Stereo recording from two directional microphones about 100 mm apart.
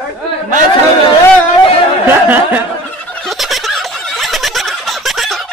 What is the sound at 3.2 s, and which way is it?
Fowl, centre (ahead or behind).